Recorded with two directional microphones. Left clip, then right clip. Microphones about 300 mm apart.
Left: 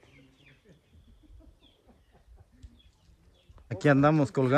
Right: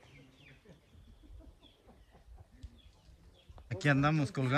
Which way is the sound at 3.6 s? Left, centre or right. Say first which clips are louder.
Left 8 dB; centre.